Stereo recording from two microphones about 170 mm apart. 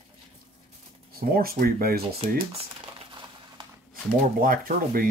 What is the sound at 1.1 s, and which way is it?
Speech, 60° right (ahead or behind).